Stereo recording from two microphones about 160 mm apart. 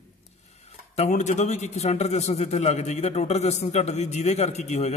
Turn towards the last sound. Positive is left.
turn(degrees=45)  # may be behind; listen again after turning